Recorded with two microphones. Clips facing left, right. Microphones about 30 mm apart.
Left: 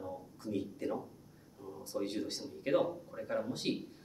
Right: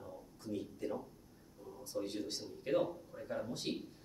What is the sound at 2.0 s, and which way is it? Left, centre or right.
Speech, left.